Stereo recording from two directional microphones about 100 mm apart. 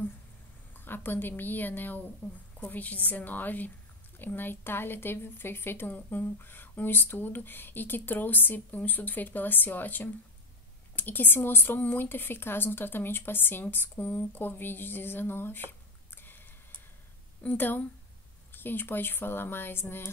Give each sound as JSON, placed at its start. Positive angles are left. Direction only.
{"t": 0.7, "sound": "a woman's voice", "side_deg": 20}
{"t": 16.2, "sound": "a sound", "side_deg": 20}
{"t": 17.4, "sound": "a woman's voice", "side_deg": 15}